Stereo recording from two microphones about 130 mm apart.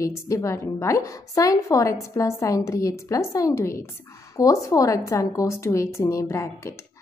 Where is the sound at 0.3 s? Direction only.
20° left (ahead or behind).